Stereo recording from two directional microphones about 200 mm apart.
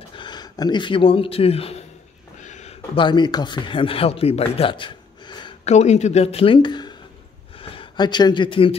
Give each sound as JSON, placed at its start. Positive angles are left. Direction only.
{"t": 0.1, "sound": "speech", "side_deg": 20}
{"t": 5.7, "sound": "speech", "side_deg": 35}